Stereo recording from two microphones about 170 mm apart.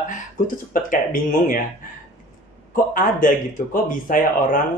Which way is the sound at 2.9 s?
50° left (ahead or behind).